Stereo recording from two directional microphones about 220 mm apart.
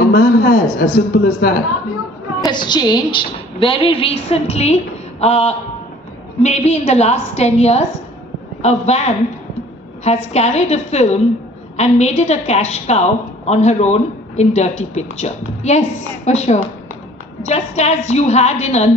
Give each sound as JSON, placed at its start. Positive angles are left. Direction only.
{"t": 0.0, "sound": "a woman's voice", "side_deg": 40}
{"t": 2.4, "sound": "a woman's voice", "side_deg": 20}